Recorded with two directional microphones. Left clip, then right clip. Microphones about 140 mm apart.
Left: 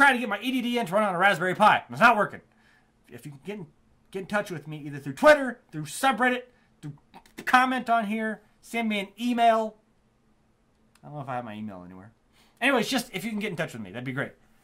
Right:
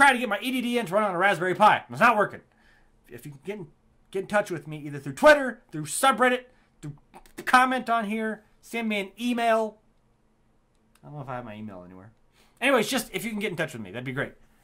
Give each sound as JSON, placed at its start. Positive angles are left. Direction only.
{"t": 0.0, "sound": "speech", "side_deg": -45}
{"t": 0.8, "sound": "speech", "side_deg": -15}
{"t": 4.1, "sound": "speech", "side_deg": -35}
{"t": 6.8, "sound": "beatboxing", "side_deg": -50}
{"t": 7.4, "sound": "speech", "side_deg": -30}
{"t": 11.0, "sound": "speech", "side_deg": -5}
{"t": 12.7, "sound": "speech", "side_deg": -35}